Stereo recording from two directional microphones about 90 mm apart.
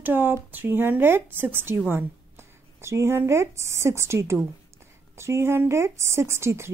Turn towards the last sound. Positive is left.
turn(degrees=-30)  # may be behind; listen again after turning